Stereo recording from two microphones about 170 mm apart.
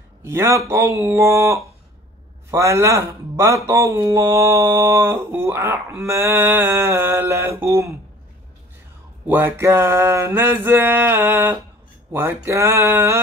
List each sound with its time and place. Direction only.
0.2 s speech: 15° right (ahead or behind)
9.3 s speech: 15° right (ahead or behind)